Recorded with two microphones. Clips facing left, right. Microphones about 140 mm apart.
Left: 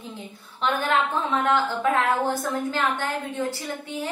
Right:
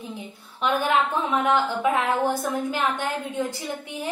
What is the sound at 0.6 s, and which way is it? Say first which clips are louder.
A woman's voice: right 1 dB; 10° right (ahead or behind).